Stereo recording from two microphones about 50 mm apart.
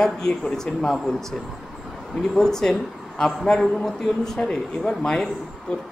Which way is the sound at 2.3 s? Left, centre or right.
Centre.